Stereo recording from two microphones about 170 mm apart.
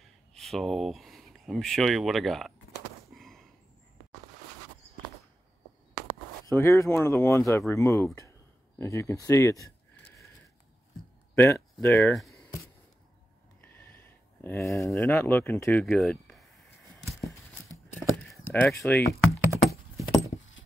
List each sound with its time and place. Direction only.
0.0 s speech: centre (ahead or behind)
3.1 s a sound: centre (ahead or behind)
6.5 s speech: 15° left (ahead or behind)
11.3 s speech: 10° left (ahead or behind)
13.7 s a sound: 10° left (ahead or behind)
14.9 s speech: 10° left (ahead or behind)
17.9 s keys jangling: 10° left (ahead or behind)
19.2 s typing: 15° right (ahead or behind)